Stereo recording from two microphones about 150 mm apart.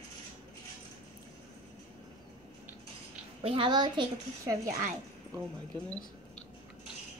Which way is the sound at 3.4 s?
35° right (ahead or behind).